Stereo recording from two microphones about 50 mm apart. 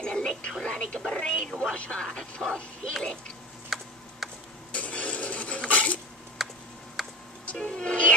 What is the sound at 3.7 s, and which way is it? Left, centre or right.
Tick-tock, centre.